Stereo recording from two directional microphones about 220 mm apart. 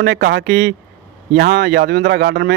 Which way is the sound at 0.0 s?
50° right (ahead or behind).